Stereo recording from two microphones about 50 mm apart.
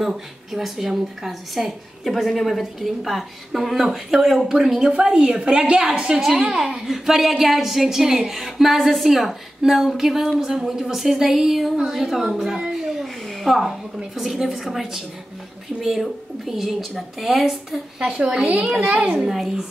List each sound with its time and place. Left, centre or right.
0.0 s a woman's voice: centre
6.9 s a woman's voice: centre
17.9 s a woman's voice: centre